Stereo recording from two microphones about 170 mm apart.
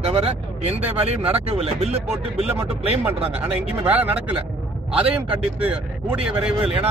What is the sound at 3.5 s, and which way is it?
Speech, 10° right (ahead or behind).